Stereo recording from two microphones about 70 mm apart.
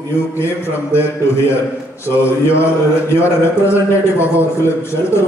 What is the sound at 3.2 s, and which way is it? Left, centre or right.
A man's voice, left.